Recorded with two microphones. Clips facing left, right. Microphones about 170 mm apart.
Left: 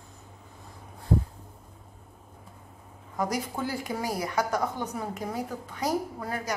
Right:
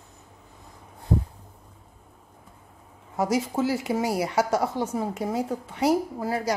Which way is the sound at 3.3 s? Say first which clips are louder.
Right 7 dB; 25° right (ahead or behind).